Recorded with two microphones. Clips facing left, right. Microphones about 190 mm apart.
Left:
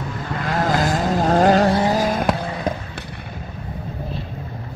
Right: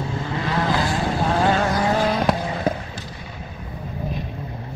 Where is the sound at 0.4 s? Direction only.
45° left (ahead or behind).